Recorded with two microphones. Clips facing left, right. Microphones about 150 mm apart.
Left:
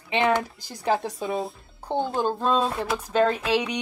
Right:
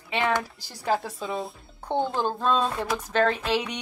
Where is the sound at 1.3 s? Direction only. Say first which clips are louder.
Left 2 dB; centre (ahead or behind).